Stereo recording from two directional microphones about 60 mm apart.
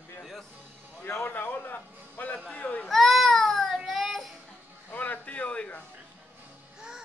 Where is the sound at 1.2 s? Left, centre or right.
Left.